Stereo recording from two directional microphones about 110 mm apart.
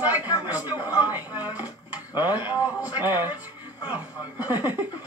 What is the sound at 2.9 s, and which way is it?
Speech, 15° right (ahead or behind).